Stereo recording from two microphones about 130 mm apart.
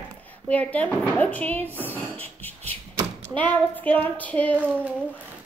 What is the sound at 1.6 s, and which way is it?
Speech, 15° right (ahead or behind).